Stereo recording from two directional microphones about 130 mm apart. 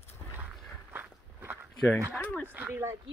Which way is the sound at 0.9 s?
15° right (ahead or behind).